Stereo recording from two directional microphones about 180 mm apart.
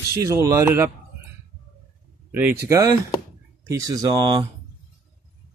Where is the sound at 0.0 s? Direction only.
15° right (ahead or behind).